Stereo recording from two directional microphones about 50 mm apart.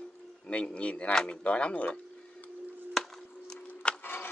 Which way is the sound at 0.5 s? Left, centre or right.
Left.